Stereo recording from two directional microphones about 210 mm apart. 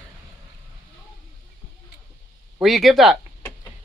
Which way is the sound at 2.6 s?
Centre (ahead or behind).